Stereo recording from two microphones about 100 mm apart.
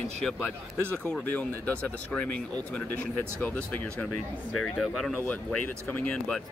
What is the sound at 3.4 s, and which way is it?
Speech, 15° left (ahead or behind).